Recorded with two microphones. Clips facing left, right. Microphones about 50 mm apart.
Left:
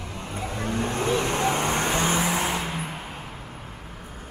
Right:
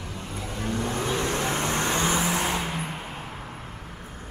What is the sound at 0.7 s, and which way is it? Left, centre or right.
Vehicle, left.